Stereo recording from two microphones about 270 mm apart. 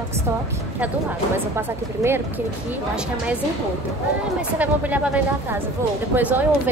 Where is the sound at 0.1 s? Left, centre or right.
Centre.